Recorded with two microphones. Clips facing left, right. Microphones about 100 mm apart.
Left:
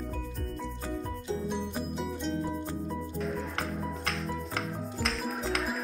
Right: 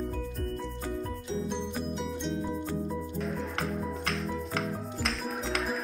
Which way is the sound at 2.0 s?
Centre (ahead or behind).